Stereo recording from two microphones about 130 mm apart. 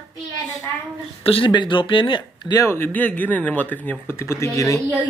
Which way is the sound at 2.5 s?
20° left (ahead or behind).